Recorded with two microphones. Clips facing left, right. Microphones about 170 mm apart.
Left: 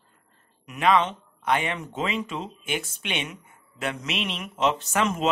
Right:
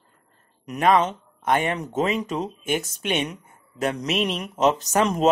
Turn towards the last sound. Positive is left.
turn(degrees=-40)  # may be behind; listen again after turning